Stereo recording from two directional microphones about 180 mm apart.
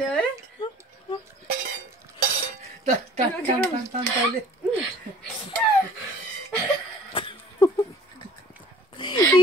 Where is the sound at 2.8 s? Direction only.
40° right (ahead or behind).